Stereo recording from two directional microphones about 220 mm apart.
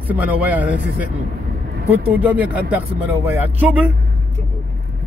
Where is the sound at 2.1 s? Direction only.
5° right (ahead or behind).